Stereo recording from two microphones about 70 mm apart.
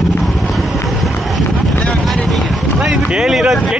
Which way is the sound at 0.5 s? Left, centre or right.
Centre.